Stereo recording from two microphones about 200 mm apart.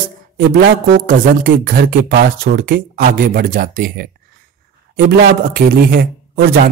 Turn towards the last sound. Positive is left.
turn(degrees=-45)  # may be behind; listen again after turning